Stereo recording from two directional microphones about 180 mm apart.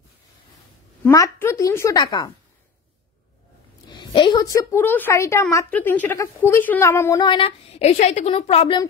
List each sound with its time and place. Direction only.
1.0 s a woman's voice: 15° left (ahead or behind)
3.9 s a woman's voice: 25° left (ahead or behind)